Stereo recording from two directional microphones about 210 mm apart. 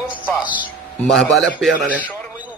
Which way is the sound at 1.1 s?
Centre (ahead or behind).